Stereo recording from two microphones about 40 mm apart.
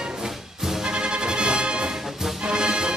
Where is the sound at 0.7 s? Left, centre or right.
Centre.